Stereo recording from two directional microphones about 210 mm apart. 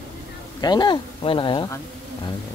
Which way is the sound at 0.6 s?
20° left (ahead or behind).